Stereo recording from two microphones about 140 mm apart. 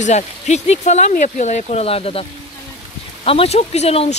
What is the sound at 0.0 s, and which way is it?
Speech, 55° left (ahead or behind).